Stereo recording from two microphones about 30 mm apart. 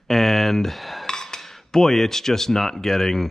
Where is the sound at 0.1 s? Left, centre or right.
Centre.